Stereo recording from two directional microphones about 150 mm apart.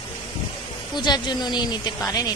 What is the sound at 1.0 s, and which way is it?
Speech, 30° left (ahead or behind).